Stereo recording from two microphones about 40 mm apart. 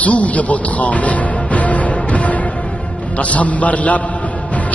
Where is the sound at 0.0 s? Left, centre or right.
Left.